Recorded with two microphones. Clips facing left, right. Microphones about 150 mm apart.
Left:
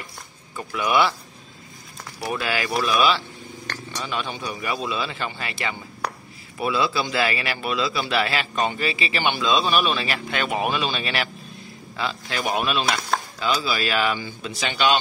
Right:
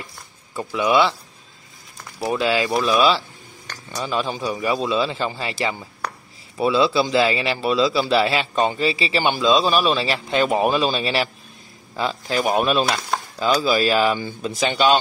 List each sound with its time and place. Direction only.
0.7 s speech: 25° right (ahead or behind)
2.1 s a man's voice: 20° right (ahead or behind); by 15.0 s 40° right (ahead or behind)